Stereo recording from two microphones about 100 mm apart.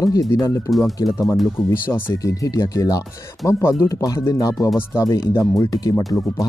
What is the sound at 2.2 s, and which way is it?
Speech, 35° left (ahead or behind).